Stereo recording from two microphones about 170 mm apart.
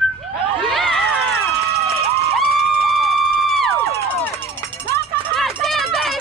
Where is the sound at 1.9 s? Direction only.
65° right (ahead or behind).